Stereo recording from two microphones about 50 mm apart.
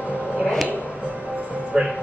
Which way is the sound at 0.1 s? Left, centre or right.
Right.